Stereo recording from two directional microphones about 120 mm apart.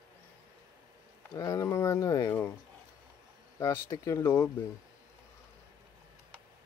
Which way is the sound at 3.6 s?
25° left (ahead or behind).